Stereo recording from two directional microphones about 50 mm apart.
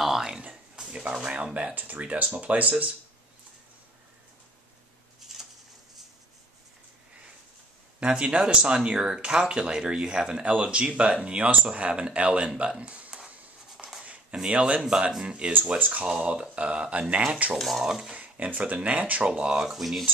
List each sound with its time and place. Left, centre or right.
0.0 s a sound: centre
0.7 s speech: centre
5.2 s a sound: centre
8.0 s speech: right
14.3 s speech: right
16.1 s speech: centre
17.6 s speech: centre
18.1 s speech: right
19.6 s speech: centre